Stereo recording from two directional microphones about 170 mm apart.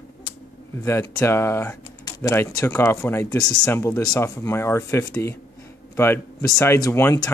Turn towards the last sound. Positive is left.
turn(degrees=15)  # may be behind; listen again after turning